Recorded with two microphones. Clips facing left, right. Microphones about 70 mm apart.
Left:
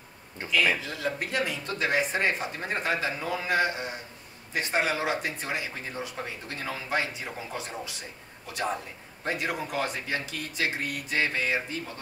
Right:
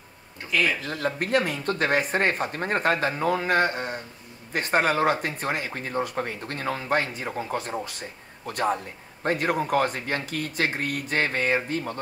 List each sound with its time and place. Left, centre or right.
0.8 s speech: right